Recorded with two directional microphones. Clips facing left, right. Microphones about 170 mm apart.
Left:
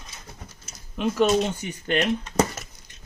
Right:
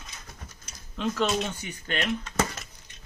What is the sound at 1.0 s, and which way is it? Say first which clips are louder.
Speech: left 5 dB; 10° left (ahead or behind).